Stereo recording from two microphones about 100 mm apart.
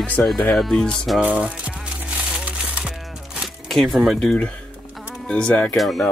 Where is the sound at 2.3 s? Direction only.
10° right (ahead or behind).